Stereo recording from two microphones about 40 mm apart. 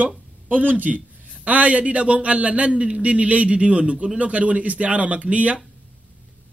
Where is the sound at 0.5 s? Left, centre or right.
Right.